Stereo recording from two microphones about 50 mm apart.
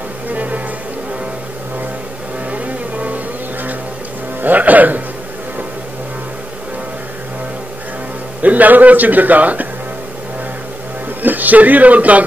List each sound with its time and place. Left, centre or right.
0.3 s music: right
2.5 s music: right
4.4 s a man's voice: right
8.4 s a man's voice: right
11.2 s a man's voice: right